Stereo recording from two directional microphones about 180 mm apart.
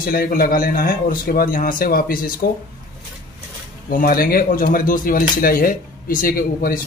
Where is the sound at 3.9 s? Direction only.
50° left (ahead or behind).